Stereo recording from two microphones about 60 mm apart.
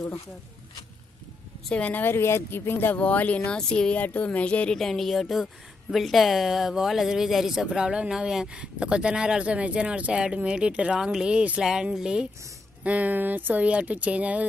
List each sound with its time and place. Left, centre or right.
1.9 s speech: left
3.0 s a woman's voice: left
4.7 s a woman's voice: centre
12.8 s speech: right